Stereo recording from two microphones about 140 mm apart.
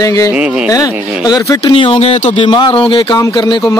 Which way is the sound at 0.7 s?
25° left (ahead or behind).